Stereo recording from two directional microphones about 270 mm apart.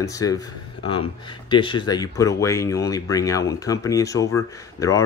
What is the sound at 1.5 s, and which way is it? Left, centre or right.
Speech, centre.